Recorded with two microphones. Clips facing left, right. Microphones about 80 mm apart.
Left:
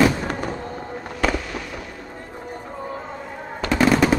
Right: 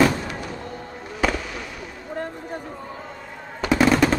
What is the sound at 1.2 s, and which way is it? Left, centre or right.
Fireworks, centre.